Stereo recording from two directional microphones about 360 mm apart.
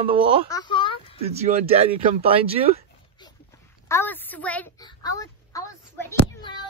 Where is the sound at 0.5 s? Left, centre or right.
Centre.